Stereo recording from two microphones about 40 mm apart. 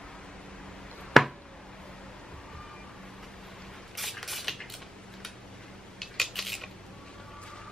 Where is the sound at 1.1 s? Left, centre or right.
Centre.